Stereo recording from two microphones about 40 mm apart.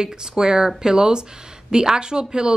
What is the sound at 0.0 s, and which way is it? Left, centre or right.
Speech, centre.